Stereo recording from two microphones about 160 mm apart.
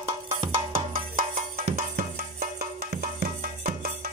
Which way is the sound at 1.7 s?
55° right (ahead or behind).